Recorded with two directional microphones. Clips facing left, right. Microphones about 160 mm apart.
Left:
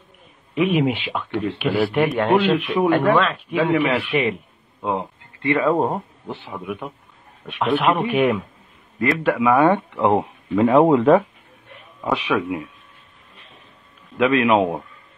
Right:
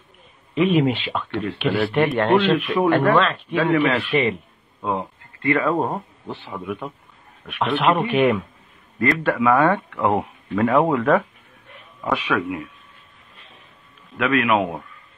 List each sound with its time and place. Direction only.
0.6 s speech: 10° left (ahead or behind)
4.8 s speech: 15° left (ahead or behind)
9.4 s speech: 15° left (ahead or behind)
14.1 s a man's voice: 25° left (ahead or behind)